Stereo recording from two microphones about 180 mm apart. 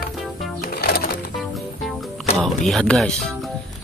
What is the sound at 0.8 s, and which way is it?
Music, 55° left (ahead or behind).